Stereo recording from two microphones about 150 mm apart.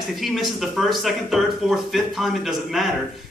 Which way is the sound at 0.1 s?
Centre (ahead or behind).